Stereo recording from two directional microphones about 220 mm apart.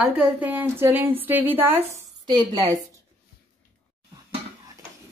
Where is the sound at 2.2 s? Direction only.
20° right (ahead or behind).